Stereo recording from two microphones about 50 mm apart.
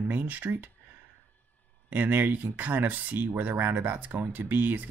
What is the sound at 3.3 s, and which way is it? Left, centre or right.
Speech, right.